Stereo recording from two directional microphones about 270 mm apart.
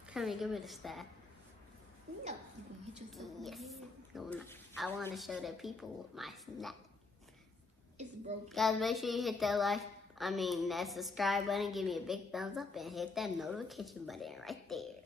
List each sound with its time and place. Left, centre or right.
0.1 s a woman's voice: centre
3.1 s a woman's voice: centre
8.0 s a sound: right
8.5 s a woman's voice: centre